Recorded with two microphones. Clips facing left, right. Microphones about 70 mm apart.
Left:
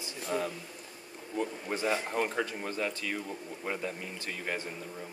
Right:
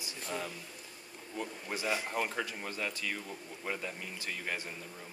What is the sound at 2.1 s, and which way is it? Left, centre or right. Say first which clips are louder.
Speech: left 4 dB; centre.